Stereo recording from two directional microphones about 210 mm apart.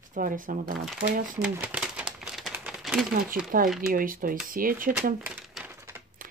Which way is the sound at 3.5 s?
40° right (ahead or behind).